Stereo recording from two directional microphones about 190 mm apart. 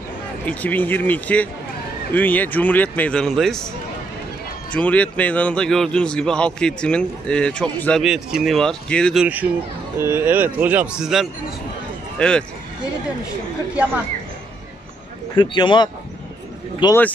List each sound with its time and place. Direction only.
0.5 s speech: 10° left (ahead or behind)
4.7 s speech: 5° left (ahead or behind)
9.2 s speech: 10° right (ahead or behind)
15.3 s speech: 25° left (ahead or behind)
16.8 s speech: 10° left (ahead or behind)